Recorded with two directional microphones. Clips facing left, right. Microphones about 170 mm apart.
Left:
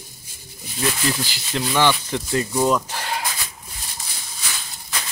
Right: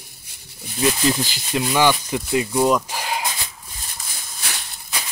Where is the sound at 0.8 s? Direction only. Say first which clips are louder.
Right 4 dB; 20° right (ahead or behind).